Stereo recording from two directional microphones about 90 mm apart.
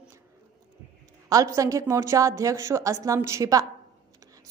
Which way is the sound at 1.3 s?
40° right (ahead or behind).